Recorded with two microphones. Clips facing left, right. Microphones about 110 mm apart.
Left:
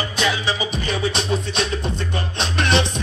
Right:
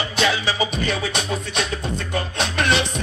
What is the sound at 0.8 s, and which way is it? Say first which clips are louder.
Music: left 1 dB; 20° left (ahead or behind).